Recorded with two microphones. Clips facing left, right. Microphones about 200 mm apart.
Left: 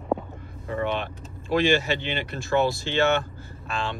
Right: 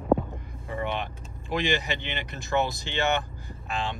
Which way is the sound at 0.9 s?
15° right (ahead or behind).